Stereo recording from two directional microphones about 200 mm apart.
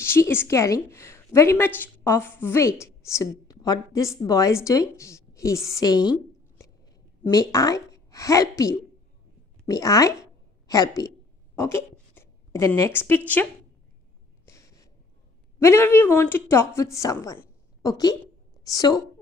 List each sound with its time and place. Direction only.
0.0 s a woman's voice: 10° left (ahead or behind)
7.2 s a woman's voice: 20° left (ahead or behind)
14.4 s gasp: 15° left (ahead or behind)
15.6 s speech: 15° left (ahead or behind)